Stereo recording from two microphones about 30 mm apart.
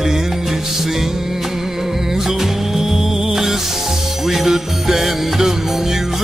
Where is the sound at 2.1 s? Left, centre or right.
Centre.